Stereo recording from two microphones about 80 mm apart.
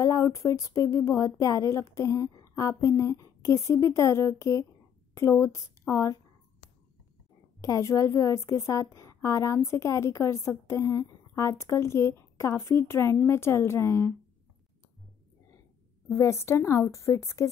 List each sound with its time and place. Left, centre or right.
0.0 s a woman's voice: left
7.6 s a woman's voice: left
16.1 s a woman's voice: left